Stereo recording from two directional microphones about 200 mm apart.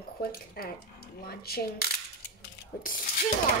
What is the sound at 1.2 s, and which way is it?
Coin, 50° left (ahead or behind).